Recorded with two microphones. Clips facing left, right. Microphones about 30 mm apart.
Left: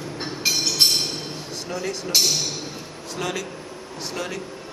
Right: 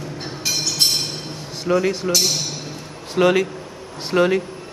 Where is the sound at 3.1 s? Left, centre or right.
Right.